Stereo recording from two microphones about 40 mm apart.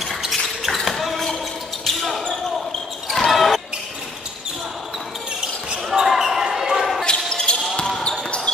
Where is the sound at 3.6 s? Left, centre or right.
Centre.